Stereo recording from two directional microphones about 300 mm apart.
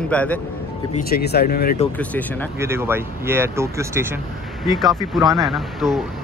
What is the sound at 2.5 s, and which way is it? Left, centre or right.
Speech, centre.